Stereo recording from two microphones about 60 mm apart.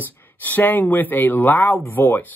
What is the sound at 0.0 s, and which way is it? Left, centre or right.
Speech, left.